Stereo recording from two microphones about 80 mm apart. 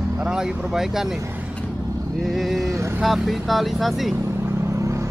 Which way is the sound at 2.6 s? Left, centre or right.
Right.